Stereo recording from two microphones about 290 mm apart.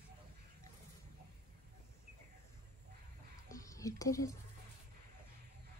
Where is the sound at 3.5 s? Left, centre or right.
Centre.